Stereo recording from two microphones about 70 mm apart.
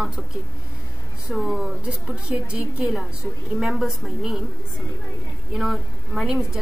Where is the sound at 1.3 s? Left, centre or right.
Centre.